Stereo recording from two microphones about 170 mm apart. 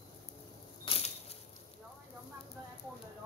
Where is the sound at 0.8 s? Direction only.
35° left (ahead or behind).